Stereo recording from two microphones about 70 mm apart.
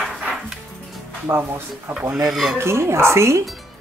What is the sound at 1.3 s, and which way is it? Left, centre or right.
Speech, right.